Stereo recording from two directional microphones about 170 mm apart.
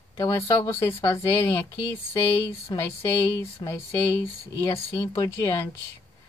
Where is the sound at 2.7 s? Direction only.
25° left (ahead or behind).